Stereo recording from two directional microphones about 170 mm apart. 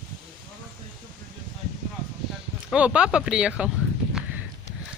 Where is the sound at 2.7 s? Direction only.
5° right (ahead or behind).